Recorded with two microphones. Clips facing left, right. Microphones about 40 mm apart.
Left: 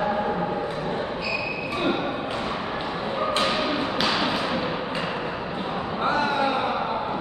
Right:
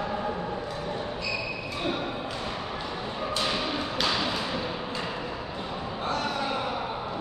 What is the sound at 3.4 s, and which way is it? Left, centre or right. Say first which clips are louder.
Music: left 5 dB; left.